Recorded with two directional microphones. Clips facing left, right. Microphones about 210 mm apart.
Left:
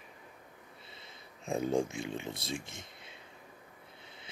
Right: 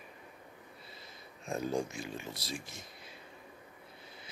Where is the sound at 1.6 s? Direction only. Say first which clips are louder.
Left 4 dB; 25° left (ahead or behind).